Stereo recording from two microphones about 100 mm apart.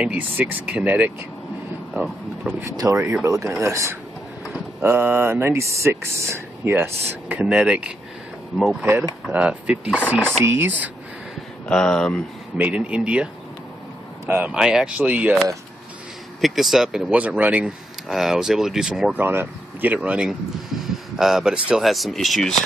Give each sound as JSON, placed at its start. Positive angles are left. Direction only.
{"t": 0.0, "sound": "speech", "side_deg": -15}
{"t": 2.8, "sound": "speech", "side_deg": -30}
{"t": 9.3, "sound": "speech", "side_deg": -10}
{"t": 10.4, "sound": "speech", "side_deg": -25}
{"t": 11.7, "sound": "speech", "side_deg": 10}
{"t": 12.5, "sound": "speech", "side_deg": -15}
{"t": 14.2, "sound": "speech", "side_deg": -20}
{"t": 14.5, "sound": "speech", "side_deg": -5}
{"t": 16.3, "sound": "speech", "side_deg": 0}
{"t": 19.1, "sound": "speech", "side_deg": -20}